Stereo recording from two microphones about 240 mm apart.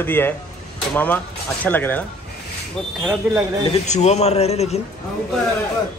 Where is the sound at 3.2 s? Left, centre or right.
Centre.